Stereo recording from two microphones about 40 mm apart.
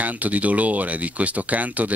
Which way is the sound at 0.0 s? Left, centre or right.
Right.